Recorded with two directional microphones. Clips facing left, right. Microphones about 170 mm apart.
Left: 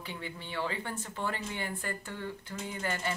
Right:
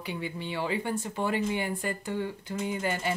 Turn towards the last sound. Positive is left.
turn(degrees=-20)  # may be behind; listen again after turning